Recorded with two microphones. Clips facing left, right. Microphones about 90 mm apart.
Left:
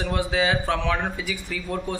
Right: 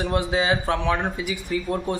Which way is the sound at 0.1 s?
20° right (ahead or behind).